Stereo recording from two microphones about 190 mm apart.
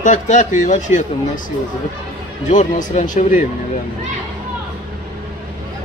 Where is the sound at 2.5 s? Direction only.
40° left (ahead or behind).